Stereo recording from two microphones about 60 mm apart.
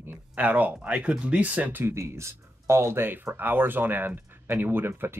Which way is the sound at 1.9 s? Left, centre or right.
Right.